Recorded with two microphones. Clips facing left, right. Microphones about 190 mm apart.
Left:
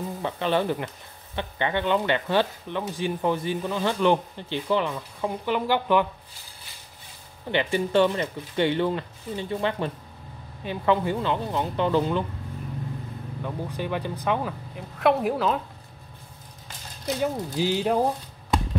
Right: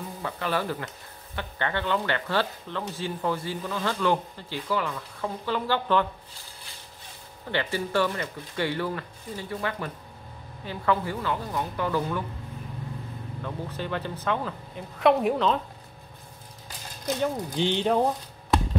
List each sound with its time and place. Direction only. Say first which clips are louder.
0.2 s speech: left 4 dB; 20° left (ahead or behind)
7.5 s speech: left 4 dB; 20° left (ahead or behind)
13.4 s speech: left 3 dB; 15° left (ahead or behind)
14.8 s speech: right 1 dB; centre (ahead or behind)
17.0 s speech: left 1 dB; 5° left (ahead or behind)